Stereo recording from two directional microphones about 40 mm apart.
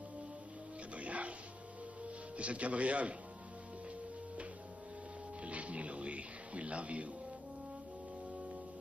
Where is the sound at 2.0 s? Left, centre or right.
Right.